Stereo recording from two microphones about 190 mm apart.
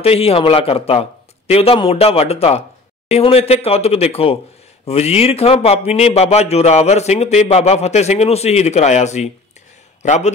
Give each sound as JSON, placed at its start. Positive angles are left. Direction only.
{"t": 0.0, "sound": "a man's voice", "side_deg": 30}